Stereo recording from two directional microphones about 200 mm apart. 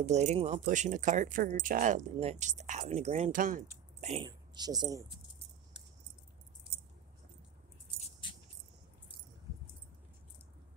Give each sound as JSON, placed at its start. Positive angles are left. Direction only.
{"t": 0.0, "sound": "speech", "side_deg": -35}
{"t": 4.3, "sound": "speech", "side_deg": -20}